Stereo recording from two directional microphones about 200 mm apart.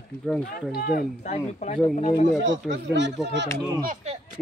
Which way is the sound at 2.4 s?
65° right (ahead or behind).